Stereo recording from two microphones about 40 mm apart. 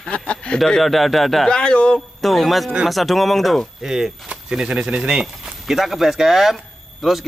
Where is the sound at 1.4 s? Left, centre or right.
Left.